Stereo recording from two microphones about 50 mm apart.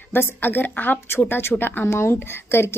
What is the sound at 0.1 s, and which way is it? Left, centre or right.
Speech, left.